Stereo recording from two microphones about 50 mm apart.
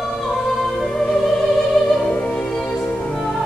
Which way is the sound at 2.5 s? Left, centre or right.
Centre.